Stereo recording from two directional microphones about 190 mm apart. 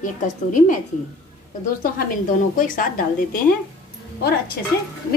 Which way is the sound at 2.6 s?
45° left (ahead or behind).